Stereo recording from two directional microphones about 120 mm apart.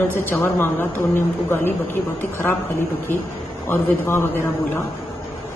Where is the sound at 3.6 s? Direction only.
20° left (ahead or behind).